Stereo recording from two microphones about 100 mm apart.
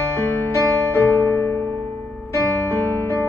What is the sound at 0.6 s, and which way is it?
Music, 25° left (ahead or behind).